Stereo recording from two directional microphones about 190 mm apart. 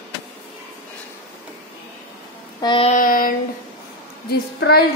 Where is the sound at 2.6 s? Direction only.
25° left (ahead or behind).